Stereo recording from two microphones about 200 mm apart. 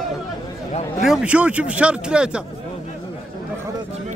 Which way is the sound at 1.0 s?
5° right (ahead or behind).